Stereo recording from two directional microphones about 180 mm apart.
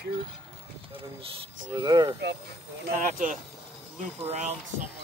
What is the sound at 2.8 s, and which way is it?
Speech, 45° right (ahead or behind).